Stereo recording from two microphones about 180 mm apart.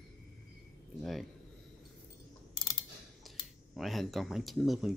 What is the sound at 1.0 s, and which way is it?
Speech, centre (ahead or behind).